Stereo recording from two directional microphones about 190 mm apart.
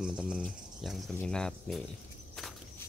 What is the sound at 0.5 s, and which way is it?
Cricket, centre (ahead or behind).